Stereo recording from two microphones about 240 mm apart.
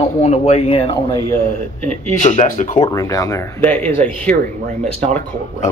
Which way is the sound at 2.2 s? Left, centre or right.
Left.